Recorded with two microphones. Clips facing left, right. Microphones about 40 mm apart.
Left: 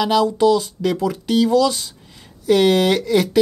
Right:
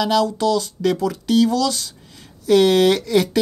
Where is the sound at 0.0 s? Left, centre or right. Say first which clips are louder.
Left 2 dB; centre.